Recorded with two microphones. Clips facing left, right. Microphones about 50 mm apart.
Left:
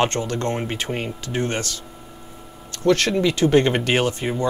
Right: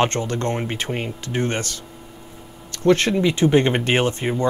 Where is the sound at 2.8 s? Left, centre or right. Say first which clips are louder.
Right 1 dB; right.